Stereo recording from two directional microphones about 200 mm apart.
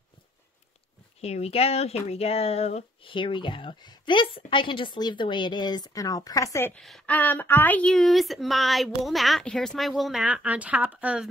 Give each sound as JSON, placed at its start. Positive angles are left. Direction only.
{"t": 1.2, "sound": "a woman's voice", "side_deg": 30}